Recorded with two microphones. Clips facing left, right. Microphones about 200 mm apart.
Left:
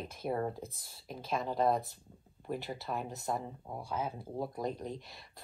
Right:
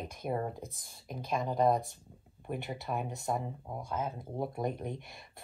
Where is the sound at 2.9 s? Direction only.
15° right (ahead or behind).